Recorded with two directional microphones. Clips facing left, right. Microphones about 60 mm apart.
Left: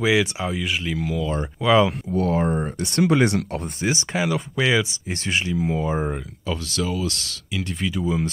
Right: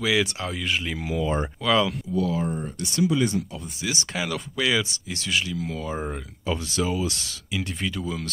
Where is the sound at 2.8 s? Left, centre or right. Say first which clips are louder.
Left 4 dB; left.